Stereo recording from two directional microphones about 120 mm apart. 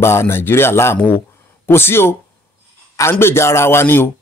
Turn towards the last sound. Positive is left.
turn(degrees=20)  # may be behind; listen again after turning